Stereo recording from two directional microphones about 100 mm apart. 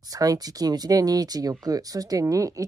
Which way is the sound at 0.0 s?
35° right (ahead or behind).